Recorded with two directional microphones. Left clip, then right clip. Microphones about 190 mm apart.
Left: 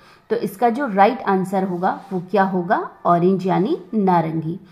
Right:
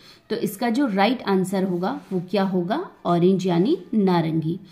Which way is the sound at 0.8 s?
20° right (ahead or behind).